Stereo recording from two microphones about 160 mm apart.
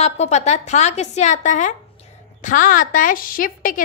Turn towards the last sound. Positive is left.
turn(degrees=60)  # may be behind; listen again after turning